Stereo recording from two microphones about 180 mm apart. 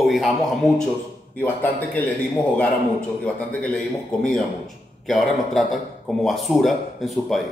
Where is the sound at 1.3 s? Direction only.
10° left (ahead or behind).